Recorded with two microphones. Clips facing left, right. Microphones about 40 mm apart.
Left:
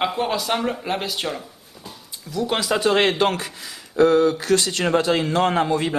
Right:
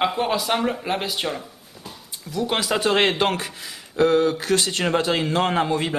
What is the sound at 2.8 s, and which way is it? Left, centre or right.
Speech, right.